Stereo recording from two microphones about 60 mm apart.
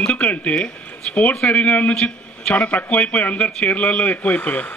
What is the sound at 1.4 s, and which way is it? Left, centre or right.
A man's voice, left.